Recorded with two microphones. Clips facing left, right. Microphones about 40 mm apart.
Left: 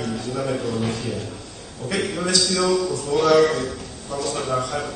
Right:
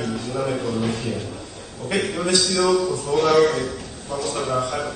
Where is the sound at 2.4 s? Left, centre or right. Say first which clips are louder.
Right 1 dB; centre.